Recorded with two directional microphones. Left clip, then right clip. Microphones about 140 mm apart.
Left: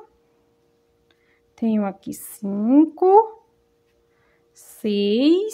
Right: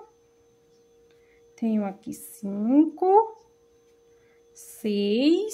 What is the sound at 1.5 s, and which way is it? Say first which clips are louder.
Speech: left 5 dB; 30° left (ahead or behind).